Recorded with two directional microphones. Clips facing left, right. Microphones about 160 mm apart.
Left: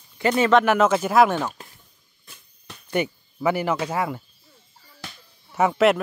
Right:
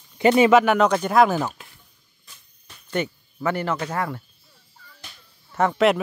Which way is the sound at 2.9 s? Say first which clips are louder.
Left 2 dB; 10° left (ahead or behind).